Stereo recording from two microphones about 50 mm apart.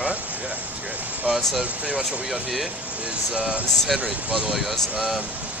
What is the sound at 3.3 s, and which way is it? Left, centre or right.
Speech, right.